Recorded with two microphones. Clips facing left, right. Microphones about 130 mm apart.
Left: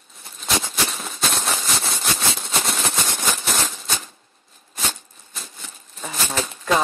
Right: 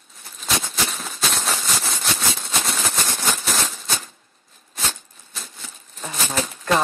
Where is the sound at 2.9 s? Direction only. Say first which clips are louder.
Even; 20° left (ahead or behind).